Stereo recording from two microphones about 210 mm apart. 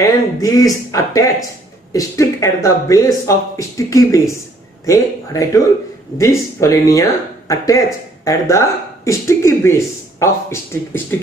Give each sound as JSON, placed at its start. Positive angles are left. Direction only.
{"t": 0.0, "sound": "speech", "side_deg": 15}